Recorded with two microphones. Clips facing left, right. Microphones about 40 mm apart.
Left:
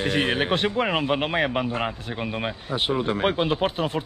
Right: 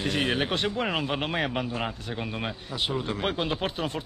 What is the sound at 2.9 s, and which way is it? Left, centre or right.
Speech, left.